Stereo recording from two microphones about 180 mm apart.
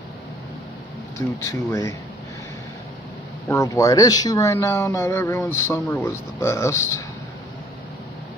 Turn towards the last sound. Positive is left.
turn(degrees=15)  # may be behind; listen again after turning